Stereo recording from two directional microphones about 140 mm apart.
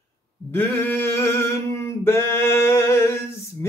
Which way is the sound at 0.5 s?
20° left (ahead or behind).